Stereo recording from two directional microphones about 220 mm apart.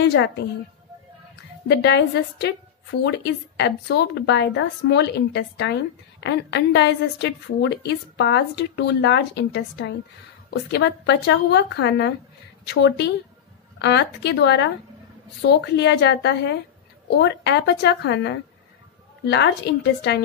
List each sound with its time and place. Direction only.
0.0 s a woman's voice: 55° left (ahead or behind)
1.7 s a woman's voice: 50° left (ahead or behind)